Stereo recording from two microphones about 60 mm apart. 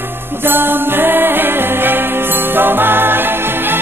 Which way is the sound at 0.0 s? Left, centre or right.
Right.